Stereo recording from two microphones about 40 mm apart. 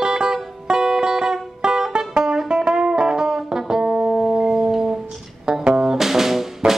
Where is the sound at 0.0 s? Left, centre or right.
Centre.